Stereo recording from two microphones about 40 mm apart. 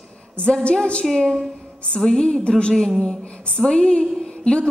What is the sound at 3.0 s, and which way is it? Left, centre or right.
A woman's voice, centre.